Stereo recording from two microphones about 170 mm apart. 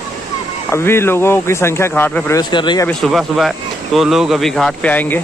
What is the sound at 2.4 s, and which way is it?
Speech, 25° left (ahead or behind).